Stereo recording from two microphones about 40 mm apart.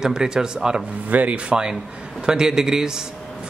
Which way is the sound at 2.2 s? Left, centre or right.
Centre.